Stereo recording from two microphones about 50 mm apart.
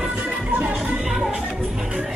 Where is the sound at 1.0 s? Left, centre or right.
Centre.